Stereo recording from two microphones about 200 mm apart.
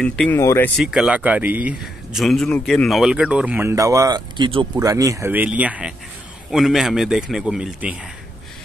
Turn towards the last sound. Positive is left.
turn(degrees=-5)  # may be behind; listen again after turning